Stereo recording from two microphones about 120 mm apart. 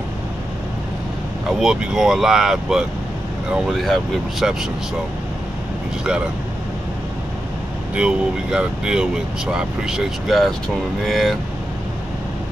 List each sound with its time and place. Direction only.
1.5 s speech: 5° right (ahead or behind)
7.9 s speech: 10° right (ahead or behind)